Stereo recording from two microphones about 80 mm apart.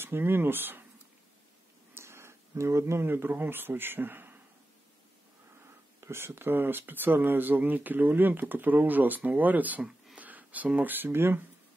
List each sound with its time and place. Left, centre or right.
0.0 s speech: right
2.0 s speech: right
6.0 s speech: right